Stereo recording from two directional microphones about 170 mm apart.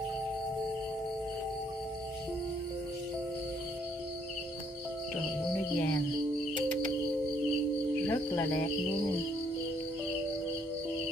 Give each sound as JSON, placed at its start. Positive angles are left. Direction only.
{"t": 5.5, "sound": "music", "side_deg": 15}
{"t": 8.1, "sound": "music", "side_deg": 20}